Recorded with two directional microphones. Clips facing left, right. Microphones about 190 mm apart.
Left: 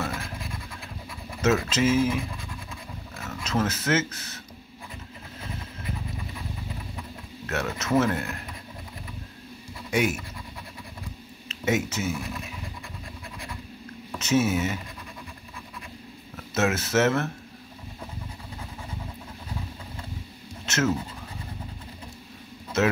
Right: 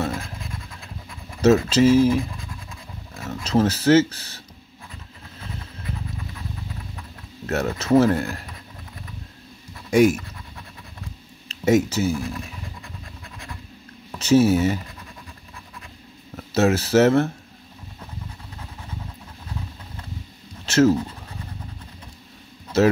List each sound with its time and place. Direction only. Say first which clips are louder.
1.4 s speech: right 7 dB; 35° right (ahead or behind)
3.3 s speech: right 7 dB; 35° right (ahead or behind)
7.4 s speech: right 6 dB; 35° right (ahead or behind)
9.8 s speech: right 9 dB; 40° right (ahead or behind)
11.4 s speech: right 8 dB; 35° right (ahead or behind)
14.1 s speech: right 7 dB; 35° right (ahead or behind)
16.3 s speech: right 6 dB; 35° right (ahead or behind)
20.6 s a sound: right 9 dB; 35° right (ahead or behind)